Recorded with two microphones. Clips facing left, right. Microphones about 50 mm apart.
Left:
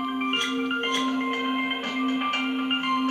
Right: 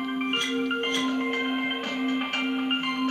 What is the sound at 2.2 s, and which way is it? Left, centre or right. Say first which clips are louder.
Music: left 2 dB; left.